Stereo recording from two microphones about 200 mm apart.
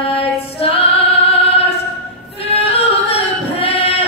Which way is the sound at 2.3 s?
30° left (ahead or behind).